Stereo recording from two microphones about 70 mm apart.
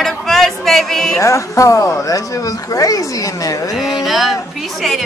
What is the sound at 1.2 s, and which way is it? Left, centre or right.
Speech, left.